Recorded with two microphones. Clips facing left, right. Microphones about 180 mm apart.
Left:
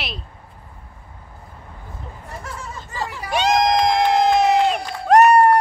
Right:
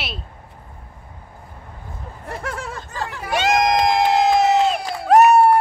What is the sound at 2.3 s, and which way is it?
Speech, 70° right (ahead or behind).